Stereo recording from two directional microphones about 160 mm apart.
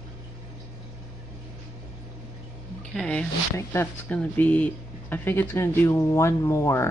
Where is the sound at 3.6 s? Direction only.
15° left (ahead or behind).